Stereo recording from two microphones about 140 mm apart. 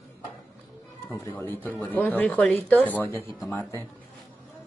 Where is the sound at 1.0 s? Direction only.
15° left (ahead or behind).